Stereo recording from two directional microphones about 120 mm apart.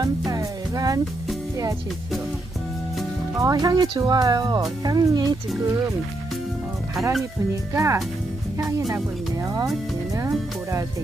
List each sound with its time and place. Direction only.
0.0 s music: 30° right (ahead or behind)
3.3 s speech: 30° right (ahead or behind)
7.7 s speech: 25° right (ahead or behind)